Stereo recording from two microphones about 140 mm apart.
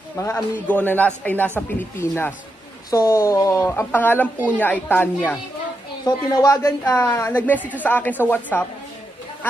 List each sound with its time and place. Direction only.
0.2 s a man's voice: 15° left (ahead or behind)
6.0 s a man's voice: 25° left (ahead or behind)